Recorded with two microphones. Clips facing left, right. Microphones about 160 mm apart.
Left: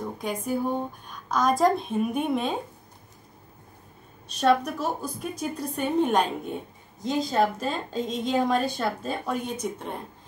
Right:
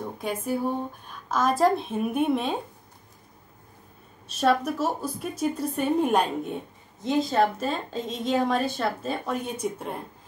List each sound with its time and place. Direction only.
0.2 s speech: 5° right (ahead or behind)
4.3 s speech: 5° right (ahead or behind)